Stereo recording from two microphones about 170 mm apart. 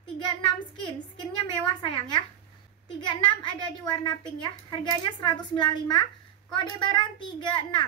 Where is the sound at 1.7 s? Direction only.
30° left (ahead or behind).